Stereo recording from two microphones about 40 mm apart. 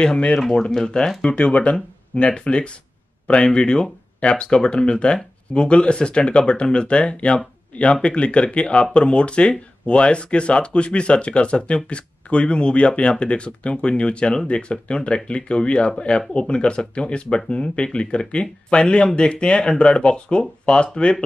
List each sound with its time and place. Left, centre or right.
0.0 s speech: left